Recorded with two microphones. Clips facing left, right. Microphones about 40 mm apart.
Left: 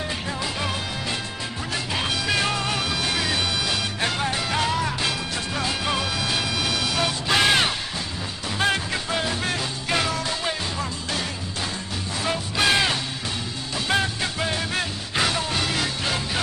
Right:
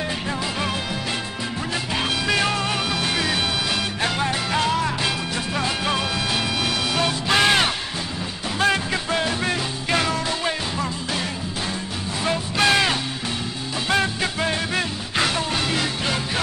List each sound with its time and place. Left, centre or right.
0.3 s music: centre
2.0 s music: centre
8.7 s music: centre
14.2 s music: centre